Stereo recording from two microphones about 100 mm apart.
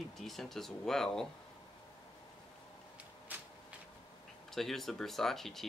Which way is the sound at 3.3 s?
15° right (ahead or behind).